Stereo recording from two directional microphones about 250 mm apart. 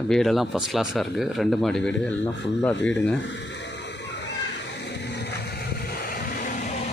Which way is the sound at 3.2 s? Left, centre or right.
Left.